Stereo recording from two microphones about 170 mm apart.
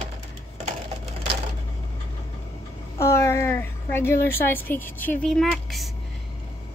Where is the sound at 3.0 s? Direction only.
15° left (ahead or behind); by 5.9 s centre (ahead or behind).